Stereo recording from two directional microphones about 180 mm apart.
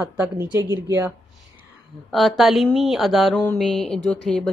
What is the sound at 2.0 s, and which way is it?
A woman's voice, centre (ahead or behind).